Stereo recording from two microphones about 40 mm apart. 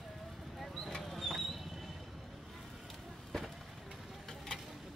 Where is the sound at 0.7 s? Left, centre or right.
Centre.